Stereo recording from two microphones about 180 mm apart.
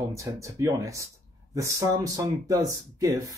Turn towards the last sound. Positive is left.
turn(degrees=-15)  # may be behind; listen again after turning